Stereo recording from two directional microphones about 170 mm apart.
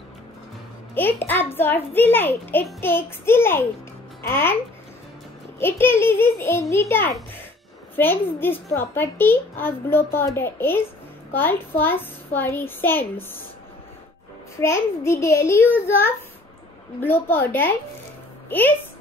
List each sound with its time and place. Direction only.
0.9 s a child's voice: 10° left (ahead or behind)
5.6 s a child's voice: 15° left (ahead or behind)
14.6 s a child's voice: 15° left (ahead or behind)